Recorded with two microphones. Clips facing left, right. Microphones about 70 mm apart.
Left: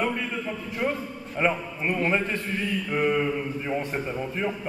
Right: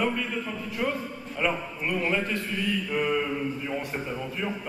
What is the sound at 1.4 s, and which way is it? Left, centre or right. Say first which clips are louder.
Speech: left 3 dB; left.